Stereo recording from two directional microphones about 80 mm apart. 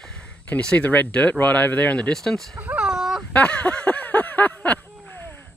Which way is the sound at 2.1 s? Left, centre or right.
Centre.